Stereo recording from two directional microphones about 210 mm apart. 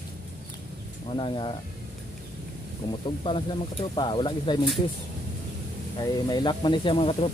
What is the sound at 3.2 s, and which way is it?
Speech, 25° left (ahead or behind).